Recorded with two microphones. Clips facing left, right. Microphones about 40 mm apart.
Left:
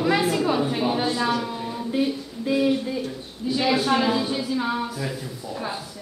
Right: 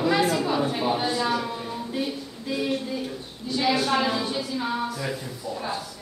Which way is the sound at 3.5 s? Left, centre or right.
Centre.